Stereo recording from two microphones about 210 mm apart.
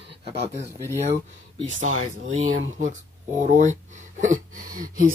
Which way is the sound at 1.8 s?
35° right (ahead or behind).